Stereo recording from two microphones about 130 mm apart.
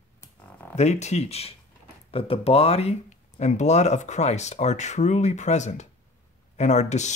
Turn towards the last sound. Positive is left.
turn(degrees=65)  # may be behind; listen again after turning